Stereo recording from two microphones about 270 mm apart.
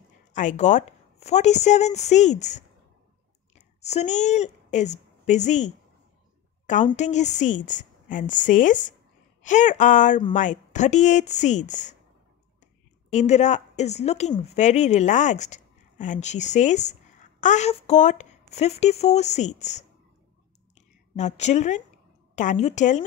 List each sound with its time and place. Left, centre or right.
0.3 s a woman's voice: left
13.1 s a woman's voice: left